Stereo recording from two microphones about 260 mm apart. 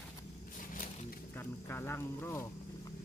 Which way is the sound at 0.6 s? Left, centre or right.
Left.